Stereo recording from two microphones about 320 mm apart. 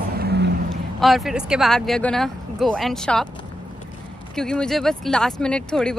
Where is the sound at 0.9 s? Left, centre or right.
Centre.